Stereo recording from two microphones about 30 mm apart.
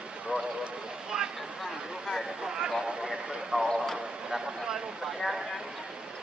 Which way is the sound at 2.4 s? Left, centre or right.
Right.